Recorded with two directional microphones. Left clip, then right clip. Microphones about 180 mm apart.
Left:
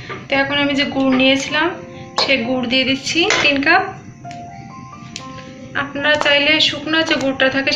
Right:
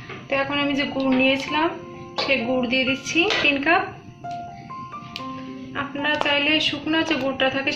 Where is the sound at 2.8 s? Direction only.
5° left (ahead or behind).